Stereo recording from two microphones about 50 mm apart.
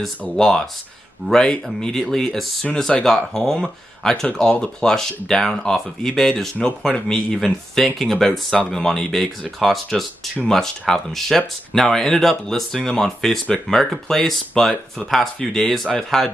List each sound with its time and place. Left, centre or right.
0.4 s speech: centre
2.6 s speech: centre